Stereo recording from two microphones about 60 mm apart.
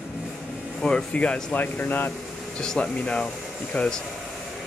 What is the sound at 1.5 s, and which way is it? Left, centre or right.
Speech, left.